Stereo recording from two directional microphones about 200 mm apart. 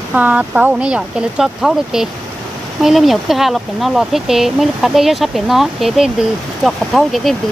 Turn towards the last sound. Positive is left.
turn(degrees=0)  # may be behind; listen again after turning